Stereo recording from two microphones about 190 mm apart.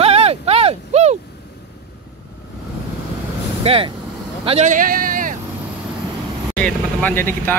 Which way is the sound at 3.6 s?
30° right (ahead or behind).